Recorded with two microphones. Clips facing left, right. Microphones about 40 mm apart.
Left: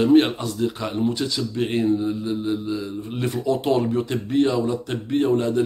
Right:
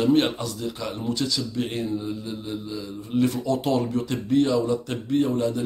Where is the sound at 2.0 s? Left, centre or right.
Left.